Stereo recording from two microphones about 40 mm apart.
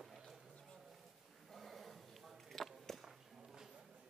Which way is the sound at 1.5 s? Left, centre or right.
Centre.